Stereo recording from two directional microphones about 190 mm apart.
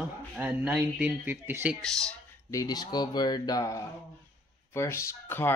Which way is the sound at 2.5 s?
20° left (ahead or behind).